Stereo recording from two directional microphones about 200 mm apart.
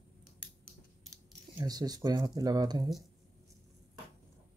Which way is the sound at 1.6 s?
20° right (ahead or behind).